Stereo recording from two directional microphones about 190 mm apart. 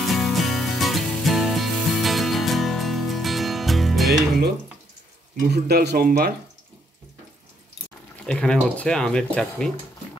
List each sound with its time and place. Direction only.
0.0 s music: centre (ahead or behind)
5.5 s speech: 60° right (ahead or behind)
8.3 s speech: 5° left (ahead or behind)